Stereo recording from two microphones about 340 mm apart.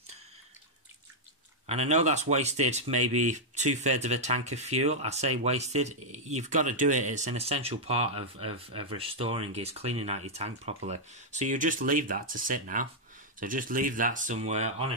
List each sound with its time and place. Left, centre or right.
1.7 s speech: centre